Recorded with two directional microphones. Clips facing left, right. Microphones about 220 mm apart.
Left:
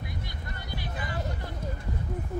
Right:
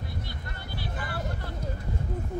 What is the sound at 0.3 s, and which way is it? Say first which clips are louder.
Vehicle: even; 15° left (ahead or behind).